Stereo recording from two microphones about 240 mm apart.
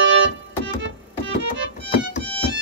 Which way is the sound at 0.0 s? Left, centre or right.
Right.